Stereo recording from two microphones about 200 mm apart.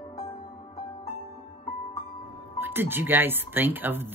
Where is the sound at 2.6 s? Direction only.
10° right (ahead or behind).